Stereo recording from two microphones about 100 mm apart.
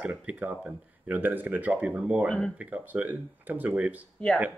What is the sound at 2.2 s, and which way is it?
Speech, 10° left (ahead or behind).